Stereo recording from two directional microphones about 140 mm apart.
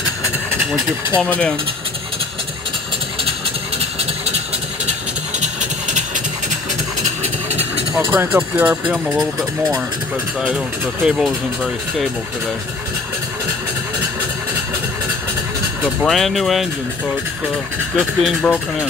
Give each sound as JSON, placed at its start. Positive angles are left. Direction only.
{"t": 1.2, "sound": "speech", "side_deg": 10}
{"t": 5.4, "sound": "a sound", "side_deg": -60}
{"t": 8.1, "sound": "speech", "side_deg": -15}
{"t": 16.0, "sound": "speech", "side_deg": 0}
{"t": 17.9, "sound": "speech", "side_deg": 5}